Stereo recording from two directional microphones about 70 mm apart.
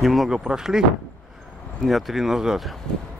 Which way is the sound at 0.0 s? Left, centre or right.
Centre.